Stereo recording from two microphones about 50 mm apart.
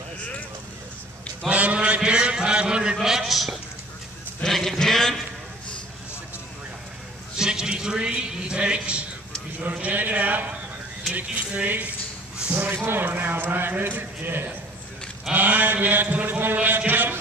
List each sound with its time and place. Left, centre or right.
1.5 s mantra: right
2.0 s a sound: centre
7.3 s a man's voice: centre
9.6 s a sound: right
11.1 s a man's voice: right
12.8 s a man's voice: right